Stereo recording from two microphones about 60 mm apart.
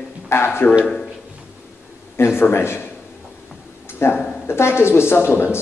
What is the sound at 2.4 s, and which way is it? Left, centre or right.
Speech, left.